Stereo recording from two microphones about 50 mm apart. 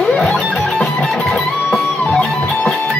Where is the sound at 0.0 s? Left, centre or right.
Centre.